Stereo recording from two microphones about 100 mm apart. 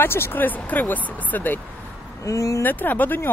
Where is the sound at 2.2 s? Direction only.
30° left (ahead or behind).